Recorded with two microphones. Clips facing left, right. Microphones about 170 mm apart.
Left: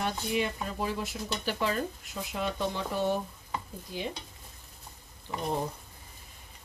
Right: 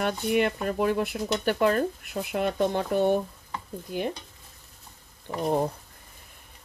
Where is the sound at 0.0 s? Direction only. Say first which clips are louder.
Right 6 dB; 60° right (ahead or behind).